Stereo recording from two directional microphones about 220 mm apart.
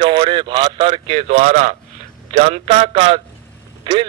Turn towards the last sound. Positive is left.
turn(degrees=-20)  # may be behind; listen again after turning